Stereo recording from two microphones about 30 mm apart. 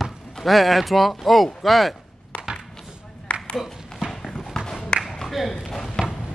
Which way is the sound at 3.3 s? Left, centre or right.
Left.